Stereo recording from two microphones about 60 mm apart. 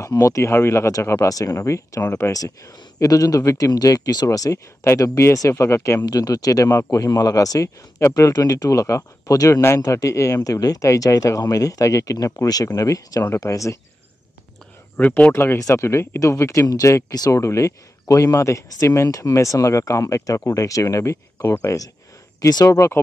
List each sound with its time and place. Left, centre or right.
0.2 s speech: left
2.3 s speech: left
4.8 s speech: left
6.0 s speech: left
12.4 s speech: left
15.0 s speech: left
15.3 s speech: left
17.1 s speech: left
19.0 s speech: left
22.4 s speech: left